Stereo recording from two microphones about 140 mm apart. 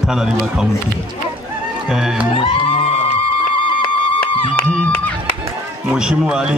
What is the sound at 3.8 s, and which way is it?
Music, 35° left (ahead or behind).